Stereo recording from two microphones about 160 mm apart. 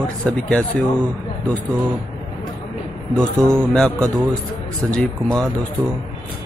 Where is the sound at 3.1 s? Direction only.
5° left (ahead or behind).